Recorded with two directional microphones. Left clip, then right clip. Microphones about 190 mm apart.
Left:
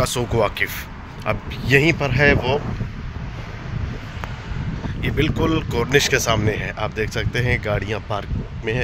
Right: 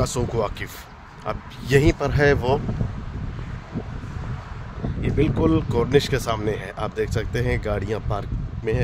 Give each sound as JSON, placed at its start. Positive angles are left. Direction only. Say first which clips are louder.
{"t": 0.0, "sound": "speech", "louder": "left 4 dB", "side_deg": 0}
{"t": 1.2, "sound": "speech", "louder": "left 5 dB", "side_deg": -15}
{"t": 5.0, "sound": "speech", "louder": "even", "side_deg": -5}